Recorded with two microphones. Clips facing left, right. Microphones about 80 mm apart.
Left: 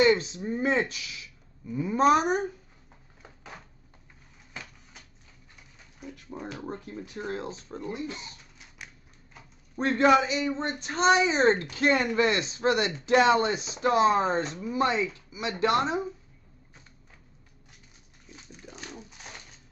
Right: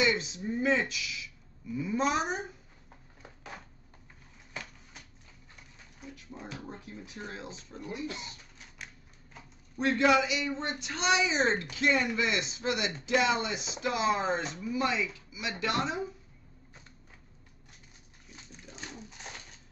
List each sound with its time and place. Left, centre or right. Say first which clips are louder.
0.0 s speech: left 7 dB; left
6.1 s speech: left 5 dB; left
8.7 s typewriter: left 1 dB; centre
9.8 s speech: left 4 dB; left
19.0 s typewriter: even; centre